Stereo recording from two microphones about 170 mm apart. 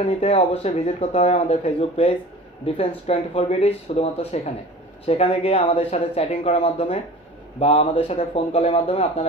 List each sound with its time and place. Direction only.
0.0 s speech: 40° left (ahead or behind)